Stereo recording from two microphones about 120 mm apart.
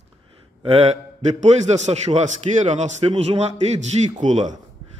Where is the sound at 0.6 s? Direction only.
55° right (ahead or behind); by 3.1 s 80° right.